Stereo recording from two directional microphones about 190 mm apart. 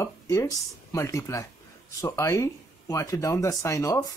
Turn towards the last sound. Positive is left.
turn(degrees=15)  # may be behind; listen again after turning